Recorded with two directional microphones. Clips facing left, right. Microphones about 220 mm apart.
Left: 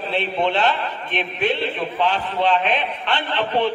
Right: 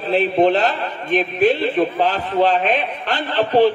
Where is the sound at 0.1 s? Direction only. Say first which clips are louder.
Right 7 dB; 40° right (ahead or behind).